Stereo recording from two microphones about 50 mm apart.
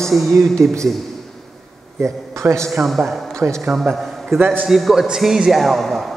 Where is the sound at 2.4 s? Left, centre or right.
Right.